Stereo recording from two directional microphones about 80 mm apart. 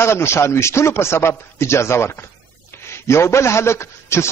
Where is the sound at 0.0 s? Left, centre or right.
Left.